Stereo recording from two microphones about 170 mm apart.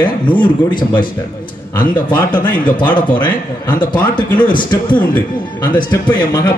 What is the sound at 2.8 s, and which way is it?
A man's voice, 10° left (ahead or behind).